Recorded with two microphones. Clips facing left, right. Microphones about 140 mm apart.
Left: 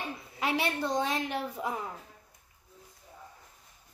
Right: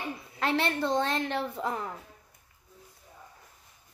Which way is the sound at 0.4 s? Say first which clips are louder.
Right 2 dB; 10° left (ahead or behind).